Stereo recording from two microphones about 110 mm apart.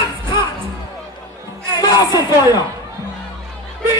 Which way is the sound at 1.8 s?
35° left (ahead or behind).